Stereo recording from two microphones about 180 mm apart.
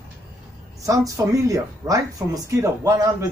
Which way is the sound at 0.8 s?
20° right (ahead or behind).